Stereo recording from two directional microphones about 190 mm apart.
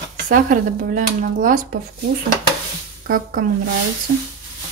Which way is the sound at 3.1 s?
45° right (ahead or behind).